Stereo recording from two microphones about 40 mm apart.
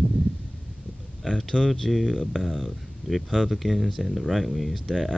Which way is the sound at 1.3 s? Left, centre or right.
Left.